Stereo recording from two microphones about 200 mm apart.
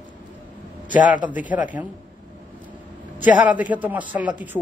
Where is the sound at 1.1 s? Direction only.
5° right (ahead or behind).